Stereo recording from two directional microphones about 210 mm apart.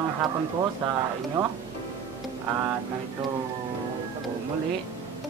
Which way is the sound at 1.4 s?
20° right (ahead or behind).